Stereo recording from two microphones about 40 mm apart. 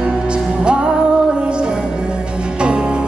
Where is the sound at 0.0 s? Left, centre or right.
Right.